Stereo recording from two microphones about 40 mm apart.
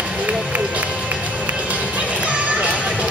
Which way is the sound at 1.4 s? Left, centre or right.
Right.